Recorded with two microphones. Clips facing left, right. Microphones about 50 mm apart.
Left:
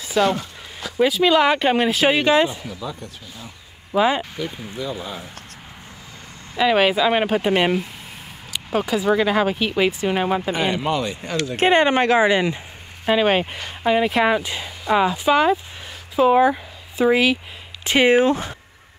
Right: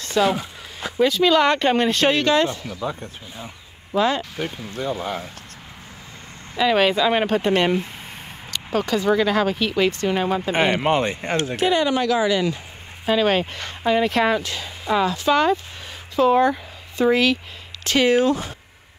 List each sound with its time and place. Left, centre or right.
0.0 s a sound: centre
0.3 s a sound: centre
0.9 s speech: centre
2.8 s speech: right
3.9 s speech: centre
6.5 s speech: centre
10.5 s speech: right
11.5 s speech: left
13.0 s speech: centre
17.8 s speech: left